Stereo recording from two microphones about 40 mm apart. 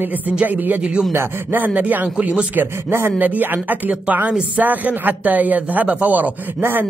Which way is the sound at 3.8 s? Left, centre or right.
Right.